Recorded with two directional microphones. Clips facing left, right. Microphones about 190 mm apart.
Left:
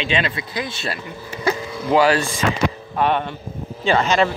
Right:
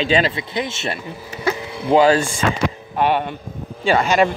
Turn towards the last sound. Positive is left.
turn(degrees=-15)  # may be behind; listen again after turning